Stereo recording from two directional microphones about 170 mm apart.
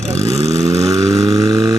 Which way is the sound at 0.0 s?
40° right (ahead or behind).